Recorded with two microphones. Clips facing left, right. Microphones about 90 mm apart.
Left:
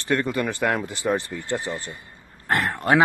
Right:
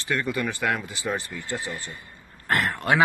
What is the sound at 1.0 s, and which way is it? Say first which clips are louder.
Speech: left 5 dB; 20° left (ahead or behind).